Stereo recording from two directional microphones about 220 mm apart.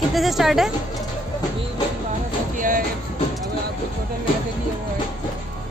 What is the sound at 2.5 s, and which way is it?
Music, 35° right (ahead or behind).